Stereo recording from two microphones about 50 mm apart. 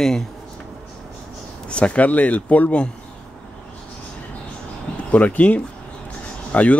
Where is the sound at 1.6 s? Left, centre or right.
Left.